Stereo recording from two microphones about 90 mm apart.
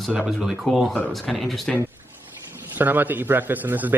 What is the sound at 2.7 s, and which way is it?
A man's voice, 20° right (ahead or behind).